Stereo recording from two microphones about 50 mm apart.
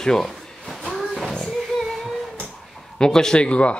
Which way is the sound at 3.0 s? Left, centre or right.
Centre.